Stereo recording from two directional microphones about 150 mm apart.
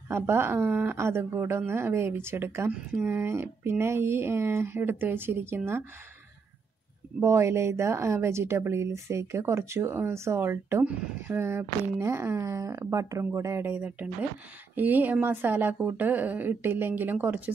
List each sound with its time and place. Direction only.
0.1 s speech: 15° right (ahead or behind)
7.2 s speech: 20° right (ahead or behind)